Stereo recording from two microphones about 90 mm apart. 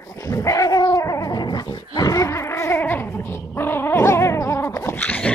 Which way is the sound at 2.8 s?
20° left (ahead or behind).